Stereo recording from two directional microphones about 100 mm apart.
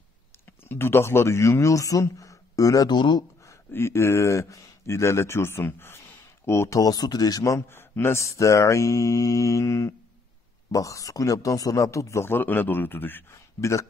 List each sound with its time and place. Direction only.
0.7 s speech: 25° left (ahead or behind); by 3.3 s 45° left (ahead or behind)
3.4 s speech: 25° left (ahead or behind)
6.8 s speech: 40° left (ahead or behind)